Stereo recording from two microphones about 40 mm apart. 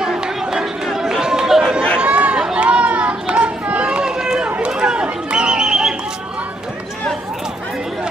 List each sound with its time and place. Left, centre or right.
0.0 s crowd: centre
0.8 s chatter: centre
2.0 s run: right
2.4 s chatter: right
4.6 s run: right
5.3 s a sound: right